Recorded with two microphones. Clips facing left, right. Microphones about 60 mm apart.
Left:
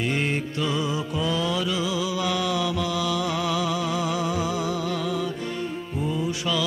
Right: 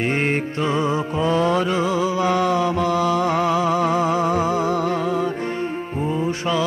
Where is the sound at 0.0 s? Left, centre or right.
Right.